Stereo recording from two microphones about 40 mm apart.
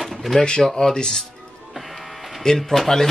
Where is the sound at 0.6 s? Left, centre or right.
Centre.